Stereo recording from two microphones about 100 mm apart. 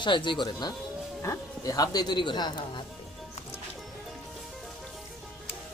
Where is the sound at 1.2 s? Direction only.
35° left (ahead or behind).